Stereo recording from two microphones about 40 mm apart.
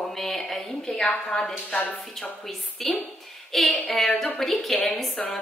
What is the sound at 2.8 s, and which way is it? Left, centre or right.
Speech, centre.